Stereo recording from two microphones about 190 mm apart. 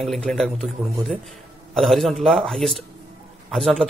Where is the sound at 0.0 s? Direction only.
Centre (ahead or behind).